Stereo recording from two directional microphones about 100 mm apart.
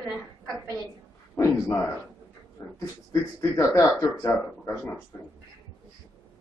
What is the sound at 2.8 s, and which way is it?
Speech, 30° left (ahead or behind).